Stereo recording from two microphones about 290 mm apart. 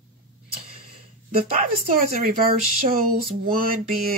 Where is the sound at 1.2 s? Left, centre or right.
Right.